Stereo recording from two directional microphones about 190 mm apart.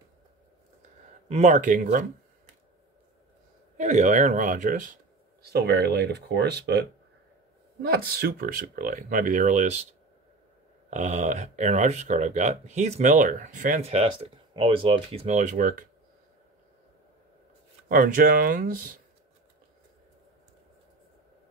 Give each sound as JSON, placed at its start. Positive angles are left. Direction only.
{"t": 1.3, "sound": "speech", "side_deg": -40}
{"t": 3.7, "sound": "speech", "side_deg": -40}
{"t": 5.4, "sound": "speech", "side_deg": -55}
{"t": 7.8, "sound": "speech", "side_deg": -55}
{"t": 10.9, "sound": "speech", "side_deg": -40}
{"t": 13.8, "sound": "speech", "side_deg": -30}
{"t": 17.8, "sound": "speech", "side_deg": -50}